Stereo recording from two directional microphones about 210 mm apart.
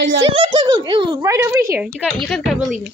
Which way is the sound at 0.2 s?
25° right (ahead or behind).